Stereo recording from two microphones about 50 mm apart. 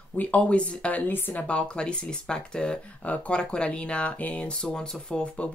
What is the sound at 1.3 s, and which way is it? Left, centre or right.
Speech, left.